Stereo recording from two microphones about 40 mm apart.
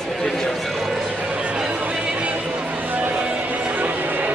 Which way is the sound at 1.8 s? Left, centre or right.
Right.